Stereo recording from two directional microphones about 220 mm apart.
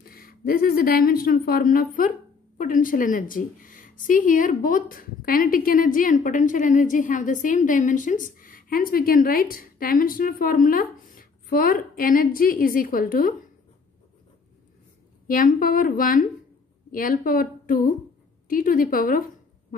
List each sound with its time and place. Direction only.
0.0 s a woman's voice: 40° left (ahead or behind)
15.2 s a woman's voice: 40° left (ahead or behind)